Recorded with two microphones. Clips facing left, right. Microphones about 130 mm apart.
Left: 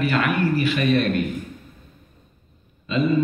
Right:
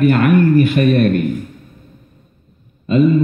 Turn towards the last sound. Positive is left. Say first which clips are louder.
# right 9 dB
turn(degrees=-50)  # may be behind; listen again after turning